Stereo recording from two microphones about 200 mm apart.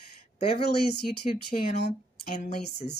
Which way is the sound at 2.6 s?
55° left (ahead or behind).